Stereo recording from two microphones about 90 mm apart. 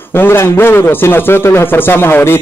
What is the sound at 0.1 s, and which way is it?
A man's voice, 25° left (ahead or behind).